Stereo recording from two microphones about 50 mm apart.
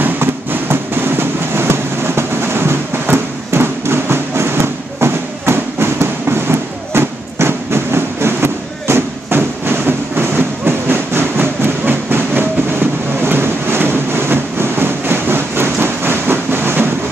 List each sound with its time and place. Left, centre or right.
0.0 s music: right
8.8 s train: right